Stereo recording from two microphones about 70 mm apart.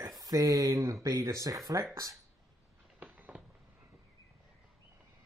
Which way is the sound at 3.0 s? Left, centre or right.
Right.